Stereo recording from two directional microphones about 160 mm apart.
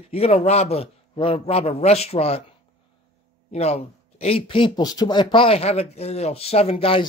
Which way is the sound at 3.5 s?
40° left (ahead or behind).